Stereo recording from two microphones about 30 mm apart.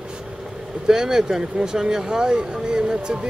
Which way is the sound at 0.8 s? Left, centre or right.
Centre.